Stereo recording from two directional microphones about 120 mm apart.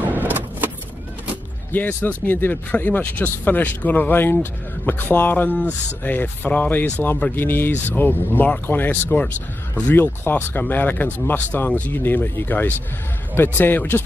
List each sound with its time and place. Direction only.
0.0 s vehicle: 15° right (ahead or behind)
1.7 s speech: 15° left (ahead or behind)